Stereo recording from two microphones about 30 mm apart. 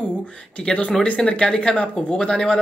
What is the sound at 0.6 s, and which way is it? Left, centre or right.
Speech, left.